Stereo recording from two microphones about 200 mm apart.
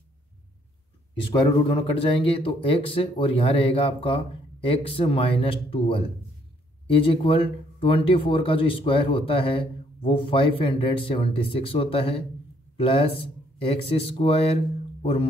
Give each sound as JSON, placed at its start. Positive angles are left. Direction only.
{"t": 1.7, "sound": "a man's voice", "side_deg": 25}